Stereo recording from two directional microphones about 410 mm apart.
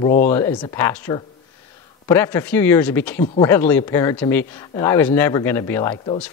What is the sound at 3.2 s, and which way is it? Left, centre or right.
Speech, centre.